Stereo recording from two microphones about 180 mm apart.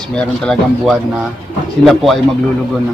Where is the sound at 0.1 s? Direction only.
5° left (ahead or behind).